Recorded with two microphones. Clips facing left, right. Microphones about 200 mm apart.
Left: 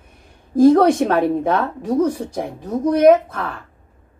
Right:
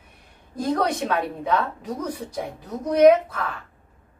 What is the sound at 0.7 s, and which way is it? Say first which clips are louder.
Speech: left 9 dB; 50° left (ahead or behind).